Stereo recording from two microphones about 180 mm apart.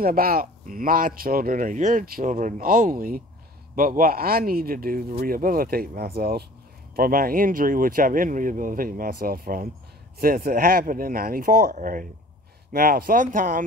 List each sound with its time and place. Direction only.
0.0 s speech: 55° right (ahead or behind)